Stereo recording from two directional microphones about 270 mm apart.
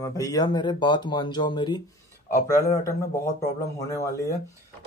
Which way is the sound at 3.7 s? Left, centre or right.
Centre.